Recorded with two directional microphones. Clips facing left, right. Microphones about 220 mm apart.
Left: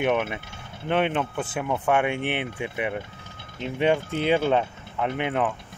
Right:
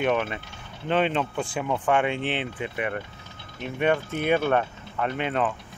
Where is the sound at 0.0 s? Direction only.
10° left (ahead or behind).